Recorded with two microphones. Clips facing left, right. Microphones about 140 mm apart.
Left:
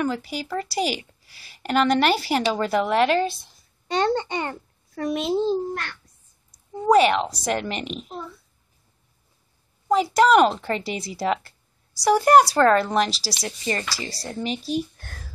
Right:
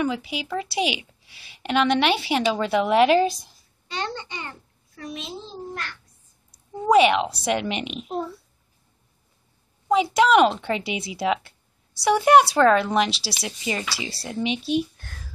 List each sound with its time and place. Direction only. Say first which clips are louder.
0.0 s a woman's voice: even; centre (ahead or behind)
3.8 s a child's voice: left 9 dB; 45° left (ahead or behind); by 5.9 s 65° left (ahead or behind)
6.8 s a woman's voice: even; 5° right (ahead or behind)
9.8 s a woman's voice: left 1 dB; centre (ahead or behind)